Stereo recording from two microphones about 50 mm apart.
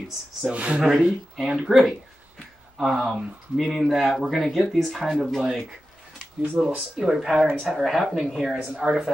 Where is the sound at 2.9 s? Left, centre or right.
Centre.